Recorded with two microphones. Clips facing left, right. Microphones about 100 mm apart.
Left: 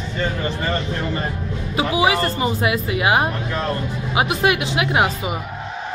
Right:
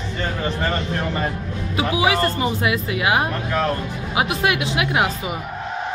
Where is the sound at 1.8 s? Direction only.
Centre (ahead or behind).